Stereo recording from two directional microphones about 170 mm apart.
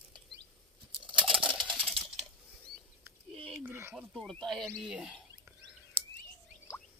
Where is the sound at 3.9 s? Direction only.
Centre (ahead or behind).